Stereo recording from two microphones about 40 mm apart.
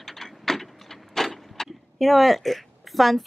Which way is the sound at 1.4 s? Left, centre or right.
Centre.